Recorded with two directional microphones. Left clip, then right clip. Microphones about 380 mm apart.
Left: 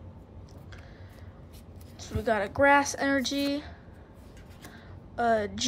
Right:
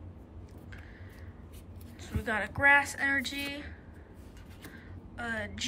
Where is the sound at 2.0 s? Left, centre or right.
Centre.